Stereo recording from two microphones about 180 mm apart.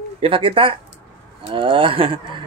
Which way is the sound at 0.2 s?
30° right (ahead or behind).